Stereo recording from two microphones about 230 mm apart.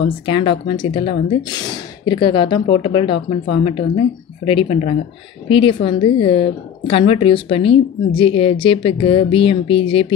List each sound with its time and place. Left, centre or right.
0.3 s a woman's voice: centre